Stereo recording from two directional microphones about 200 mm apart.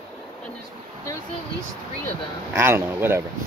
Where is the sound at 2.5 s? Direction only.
10° right (ahead or behind).